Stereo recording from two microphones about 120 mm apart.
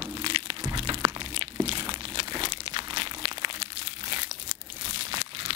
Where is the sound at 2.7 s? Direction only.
40° right (ahead or behind).